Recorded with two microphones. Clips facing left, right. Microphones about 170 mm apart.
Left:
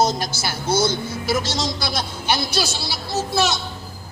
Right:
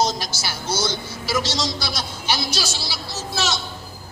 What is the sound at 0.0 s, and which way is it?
A woman's voice, 55° left (ahead or behind).